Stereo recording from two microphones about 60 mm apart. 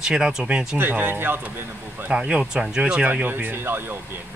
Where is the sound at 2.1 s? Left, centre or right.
Centre.